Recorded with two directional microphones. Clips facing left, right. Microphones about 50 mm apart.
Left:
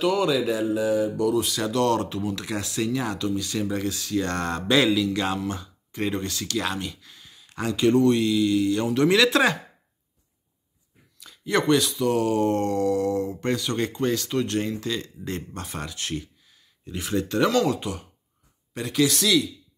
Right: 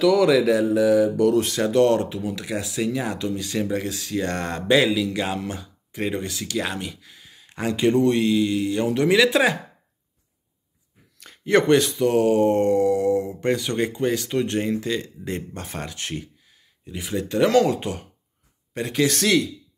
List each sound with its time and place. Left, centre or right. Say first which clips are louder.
0.0 s speech: right 5 dB; right
1.3 s speech: right 3 dB; right
1.6 s speech: right 6 dB; right
2.0 s speech: right 1 dB; centre
4.7 s speech: right 1 dB; centre; by 8.9 s right
8.9 s speech: right 2 dB; centre
11.1 s speech: right 5 dB; right
16.8 s speech: left 1 dB; centre
17.5 s speech: right 4 dB; right
19.1 s speech: right 2 dB; right